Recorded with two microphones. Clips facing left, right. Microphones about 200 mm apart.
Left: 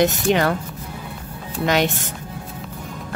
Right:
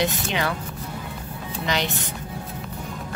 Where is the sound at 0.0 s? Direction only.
45° left (ahead or behind).